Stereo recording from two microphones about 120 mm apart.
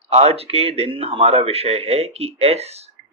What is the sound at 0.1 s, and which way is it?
Speech, 60° right (ahead or behind).